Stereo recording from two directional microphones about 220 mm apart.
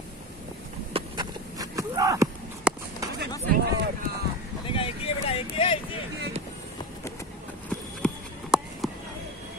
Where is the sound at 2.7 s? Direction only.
5° right (ahead or behind).